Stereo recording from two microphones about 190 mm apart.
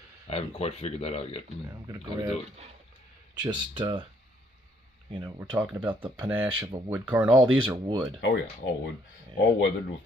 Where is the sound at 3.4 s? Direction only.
20° right (ahead or behind).